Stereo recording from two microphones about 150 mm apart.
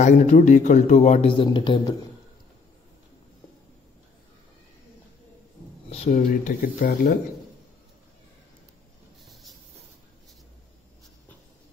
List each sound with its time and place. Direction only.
0.0 s a man's voice: 50° left (ahead or behind)
1.3 s speech: 35° left (ahead or behind)
5.9 s speech: 50° left (ahead or behind); by 7.2 s 70° left (ahead or behind)